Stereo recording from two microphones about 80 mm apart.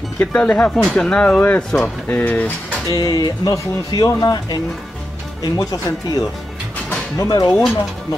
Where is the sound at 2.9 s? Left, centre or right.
Left.